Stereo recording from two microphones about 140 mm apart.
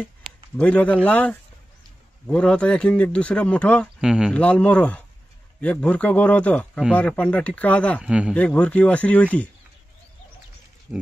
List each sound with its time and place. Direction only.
0.6 s speech: 10° left (ahead or behind)
4.0 s speech: 5° right (ahead or behind)
4.3 s speech: 10° left (ahead or behind)
8.0 s a man's voice: 5° right (ahead or behind)
8.4 s speech: 10° left (ahead or behind)
10.9 s speech: 10° right (ahead or behind)